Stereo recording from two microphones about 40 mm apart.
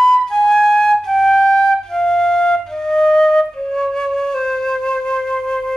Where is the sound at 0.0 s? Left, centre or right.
Centre.